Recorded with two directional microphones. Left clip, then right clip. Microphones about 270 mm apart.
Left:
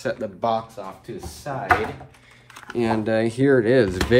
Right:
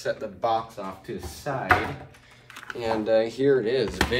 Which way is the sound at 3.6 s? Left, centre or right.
Centre.